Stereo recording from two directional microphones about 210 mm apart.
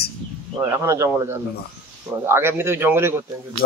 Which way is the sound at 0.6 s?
15° right (ahead or behind).